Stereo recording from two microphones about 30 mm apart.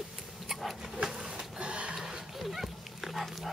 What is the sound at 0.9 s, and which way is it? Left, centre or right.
Speech, right.